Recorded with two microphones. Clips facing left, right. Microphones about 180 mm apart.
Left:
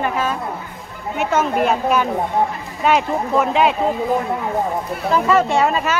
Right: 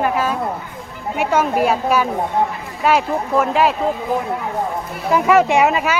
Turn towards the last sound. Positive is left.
turn(degrees=-10)  # may be behind; listen again after turning